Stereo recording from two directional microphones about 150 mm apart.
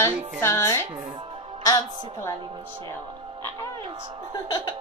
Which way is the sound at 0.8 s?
30° right (ahead or behind).